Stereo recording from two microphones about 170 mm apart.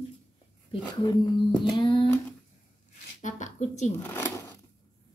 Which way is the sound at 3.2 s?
45° left (ahead or behind).